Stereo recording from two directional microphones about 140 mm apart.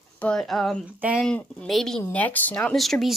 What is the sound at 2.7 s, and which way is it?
Speech, centre (ahead or behind).